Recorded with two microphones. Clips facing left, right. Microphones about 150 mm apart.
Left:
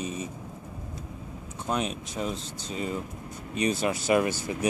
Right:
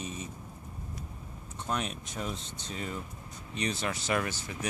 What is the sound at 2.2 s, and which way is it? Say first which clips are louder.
Speech: left 5 dB; 35° left (ahead or behind).